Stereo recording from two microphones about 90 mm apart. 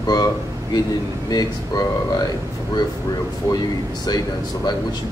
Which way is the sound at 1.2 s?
45° left (ahead or behind).